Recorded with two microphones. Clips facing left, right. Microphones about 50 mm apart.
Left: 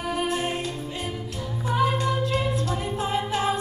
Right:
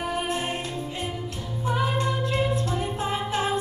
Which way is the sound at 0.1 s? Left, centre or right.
Right.